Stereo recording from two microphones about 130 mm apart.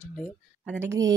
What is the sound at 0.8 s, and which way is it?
Speech, 25° right (ahead or behind).